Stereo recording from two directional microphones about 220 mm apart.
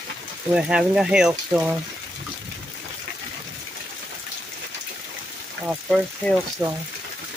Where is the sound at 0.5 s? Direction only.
5° right (ahead or behind).